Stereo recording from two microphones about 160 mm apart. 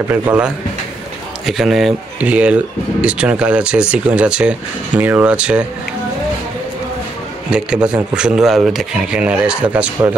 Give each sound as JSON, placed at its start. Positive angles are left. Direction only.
{"t": 0.1, "sound": "speech", "side_deg": -10}
{"t": 7.5, "sound": "speech", "side_deg": -5}